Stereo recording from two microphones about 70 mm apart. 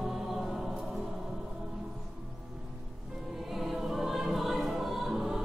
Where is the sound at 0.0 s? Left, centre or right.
Centre.